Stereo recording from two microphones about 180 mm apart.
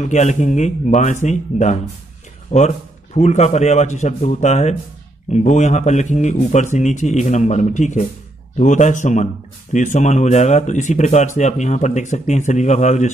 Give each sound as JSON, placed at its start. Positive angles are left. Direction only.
{"t": 0.0, "sound": "speech", "side_deg": 40}